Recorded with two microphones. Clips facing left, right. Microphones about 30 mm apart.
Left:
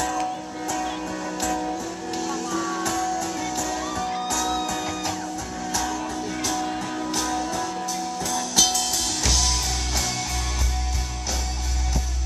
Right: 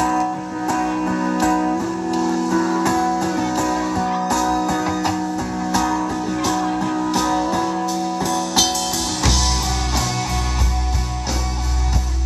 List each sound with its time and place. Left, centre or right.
1.0 s music: right
2.1 s music: right